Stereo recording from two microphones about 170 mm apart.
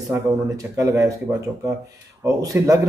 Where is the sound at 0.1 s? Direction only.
20° right (ahead or behind).